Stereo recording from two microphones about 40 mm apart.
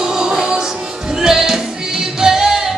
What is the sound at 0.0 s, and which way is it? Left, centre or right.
Music, centre.